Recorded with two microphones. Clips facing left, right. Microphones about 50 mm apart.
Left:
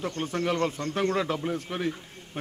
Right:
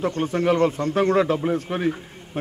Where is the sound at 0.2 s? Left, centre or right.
Centre.